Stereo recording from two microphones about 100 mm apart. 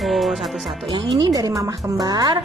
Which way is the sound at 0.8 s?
50° right (ahead or behind).